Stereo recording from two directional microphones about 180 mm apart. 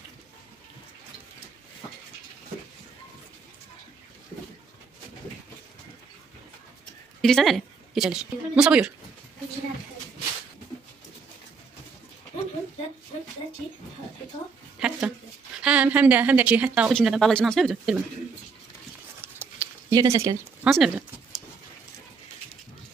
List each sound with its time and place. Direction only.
7.2 s a woman's voice: centre (ahead or behind)
14.8 s a woman's voice: 5° right (ahead or behind)
19.2 s a sound: 10° right (ahead or behind)
20.6 s speech: centre (ahead or behind)